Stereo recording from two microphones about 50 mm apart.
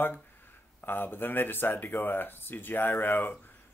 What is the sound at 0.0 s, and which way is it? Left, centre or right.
Speech, left.